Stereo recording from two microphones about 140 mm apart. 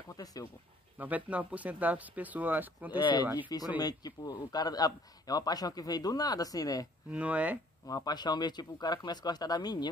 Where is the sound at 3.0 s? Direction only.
35° left (ahead or behind).